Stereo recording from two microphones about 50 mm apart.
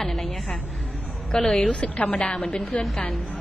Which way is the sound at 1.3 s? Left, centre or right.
Centre.